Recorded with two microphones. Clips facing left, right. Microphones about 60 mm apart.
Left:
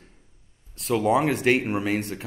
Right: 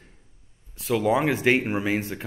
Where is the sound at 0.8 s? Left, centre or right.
Centre.